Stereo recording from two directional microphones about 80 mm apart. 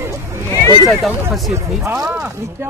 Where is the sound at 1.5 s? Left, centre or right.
Right.